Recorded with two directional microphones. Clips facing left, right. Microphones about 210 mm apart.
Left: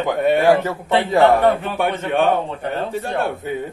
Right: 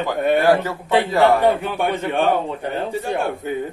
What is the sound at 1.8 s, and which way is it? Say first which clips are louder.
Speech: left 2 dB; centre (ahead or behind).